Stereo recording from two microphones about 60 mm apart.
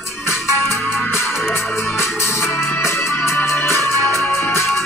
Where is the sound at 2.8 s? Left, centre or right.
Left.